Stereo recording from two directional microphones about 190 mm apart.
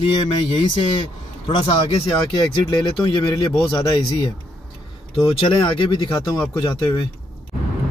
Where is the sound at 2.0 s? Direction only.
25° left (ahead or behind).